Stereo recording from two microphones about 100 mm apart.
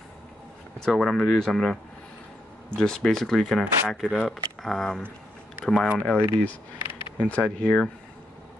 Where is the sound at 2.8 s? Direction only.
5° left (ahead or behind).